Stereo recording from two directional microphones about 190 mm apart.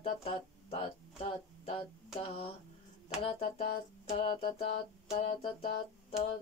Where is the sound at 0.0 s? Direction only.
30° left (ahead or behind).